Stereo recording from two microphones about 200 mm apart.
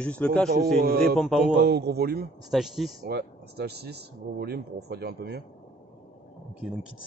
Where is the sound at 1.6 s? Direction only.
55° right (ahead or behind).